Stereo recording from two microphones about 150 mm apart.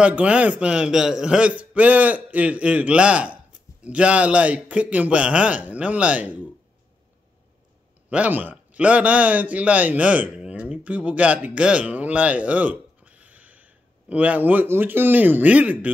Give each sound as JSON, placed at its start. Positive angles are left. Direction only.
{"t": 0.0, "sound": "a man's voice", "side_deg": -10}
{"t": 8.1, "sound": "a man's voice", "side_deg": -10}